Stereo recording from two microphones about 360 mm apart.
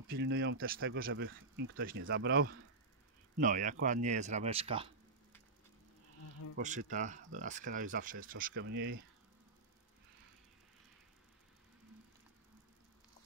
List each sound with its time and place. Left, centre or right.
0.1 s speech: right
6.6 s speech: right